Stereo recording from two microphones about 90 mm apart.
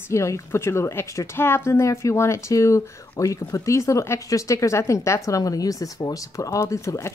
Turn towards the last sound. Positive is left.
turn(degrees=35)  # may be behind; listen again after turning